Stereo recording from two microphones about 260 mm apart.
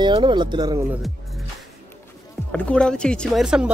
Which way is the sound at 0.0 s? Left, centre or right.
Centre.